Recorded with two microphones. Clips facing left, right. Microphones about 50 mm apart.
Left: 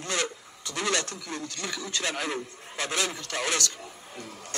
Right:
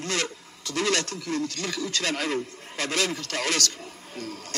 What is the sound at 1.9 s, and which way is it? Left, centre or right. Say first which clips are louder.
Speech: right 2 dB; right.